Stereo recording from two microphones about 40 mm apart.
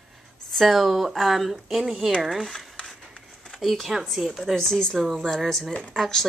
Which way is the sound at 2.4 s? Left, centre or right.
Centre.